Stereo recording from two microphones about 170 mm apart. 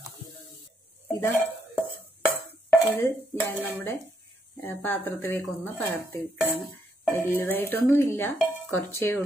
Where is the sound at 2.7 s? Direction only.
10° left (ahead or behind).